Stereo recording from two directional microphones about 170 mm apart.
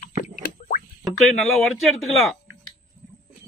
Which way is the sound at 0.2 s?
50° left (ahead or behind).